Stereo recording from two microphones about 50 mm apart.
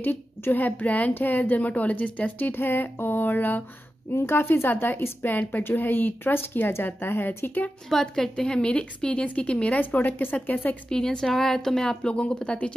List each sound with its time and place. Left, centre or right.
0.0 s a woman's voice: left
2.5 s a woman's voice: left
4.1 s a woman's voice: left
7.9 s a woman's voice: centre
9.8 s a woman's voice: left
10.9 s a woman's voice: centre